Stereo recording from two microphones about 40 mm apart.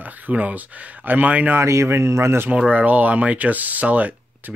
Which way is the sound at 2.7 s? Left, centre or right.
Right.